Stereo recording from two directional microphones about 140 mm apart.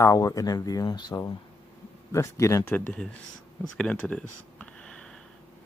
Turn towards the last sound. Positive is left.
turn(degrees=5)  # may be behind; listen again after turning